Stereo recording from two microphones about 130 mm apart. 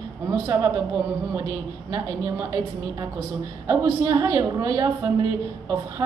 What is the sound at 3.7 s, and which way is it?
A woman's voice, 25° right (ahead or behind).